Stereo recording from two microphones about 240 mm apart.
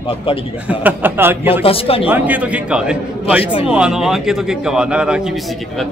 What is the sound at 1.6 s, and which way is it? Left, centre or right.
Speech, left.